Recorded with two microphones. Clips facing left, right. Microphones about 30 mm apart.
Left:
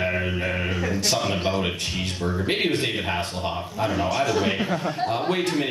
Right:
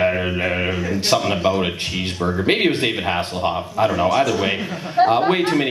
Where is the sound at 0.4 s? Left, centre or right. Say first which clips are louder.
Right 5 dB; right.